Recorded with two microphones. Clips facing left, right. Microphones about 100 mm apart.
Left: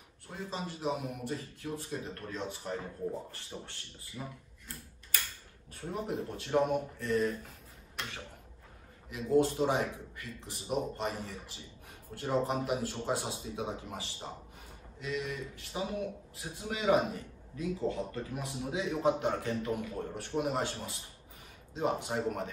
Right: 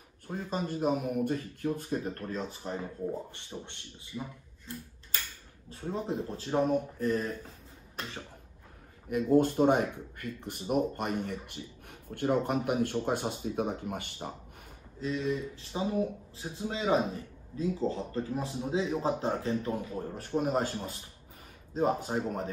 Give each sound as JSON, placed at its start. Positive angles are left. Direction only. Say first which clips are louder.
{"t": 0.3, "sound": "speech", "louder": "right 6 dB", "side_deg": -45}
{"t": 2.6, "sound": "speech", "louder": "right 2 dB", "side_deg": -25}
{"t": 5.7, "sound": "speech", "louder": "right 2 dB", "side_deg": -30}
{"t": 9.1, "sound": "speech", "louder": "right 3 dB", "side_deg": -50}
{"t": 15.0, "sound": "speech", "louder": "right 5 dB", "side_deg": -30}